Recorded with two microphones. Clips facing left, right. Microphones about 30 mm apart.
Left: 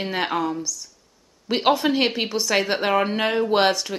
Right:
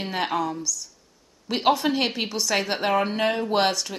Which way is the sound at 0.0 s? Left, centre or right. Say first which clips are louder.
Left 2 dB; centre.